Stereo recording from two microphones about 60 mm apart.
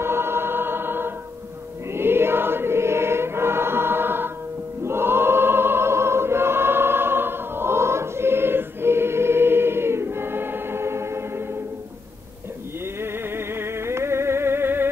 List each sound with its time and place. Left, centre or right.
0.0 s choir: right
13.0 s music: right